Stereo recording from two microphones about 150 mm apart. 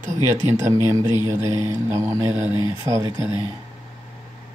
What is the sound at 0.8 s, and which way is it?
Speech, 20° right (ahead or behind).